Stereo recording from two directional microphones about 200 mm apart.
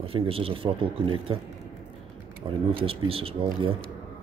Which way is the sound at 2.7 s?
30° right (ahead or behind).